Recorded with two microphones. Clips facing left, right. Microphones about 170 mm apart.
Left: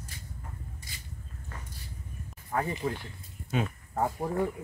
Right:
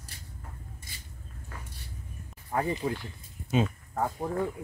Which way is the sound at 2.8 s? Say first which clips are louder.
Right 1 dB; 10° right (ahead or behind).